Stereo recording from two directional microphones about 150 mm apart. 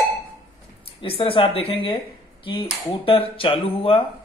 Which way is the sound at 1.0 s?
35° left (ahead or behind).